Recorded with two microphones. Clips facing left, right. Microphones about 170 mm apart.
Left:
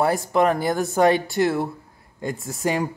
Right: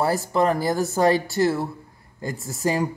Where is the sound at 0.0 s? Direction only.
Centre (ahead or behind).